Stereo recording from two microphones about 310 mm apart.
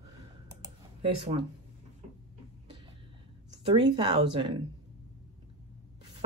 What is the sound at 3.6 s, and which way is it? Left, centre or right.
Speech, centre.